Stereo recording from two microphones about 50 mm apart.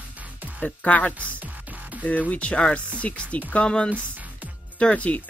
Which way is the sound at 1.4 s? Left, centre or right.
Right.